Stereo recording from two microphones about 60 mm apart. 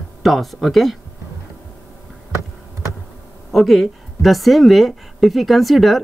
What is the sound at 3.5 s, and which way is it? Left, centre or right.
Speech, centre.